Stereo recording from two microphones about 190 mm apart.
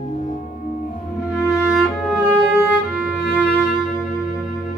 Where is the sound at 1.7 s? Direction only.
Centre (ahead or behind).